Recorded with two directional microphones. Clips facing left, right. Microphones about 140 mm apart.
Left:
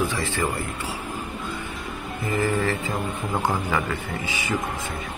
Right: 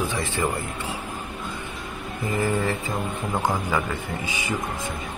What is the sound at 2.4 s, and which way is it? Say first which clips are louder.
Speech: even; 15° right (ahead or behind).